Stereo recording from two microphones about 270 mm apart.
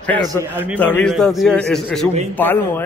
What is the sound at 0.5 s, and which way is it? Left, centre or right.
Speech, centre.